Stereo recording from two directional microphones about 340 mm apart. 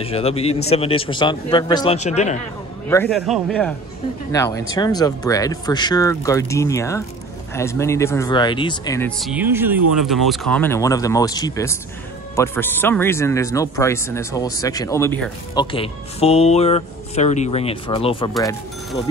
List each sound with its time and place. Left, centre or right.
0.0 s a man's voice: centre
2.9 s a man's voice: centre
15.6 s speech: centre
18.3 s speech: centre